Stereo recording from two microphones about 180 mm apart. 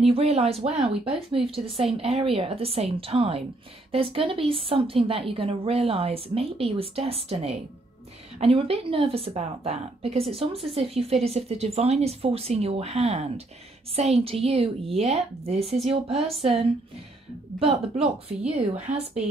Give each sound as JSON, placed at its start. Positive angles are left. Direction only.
{"t": 0.0, "sound": "a woman's voice", "side_deg": -35}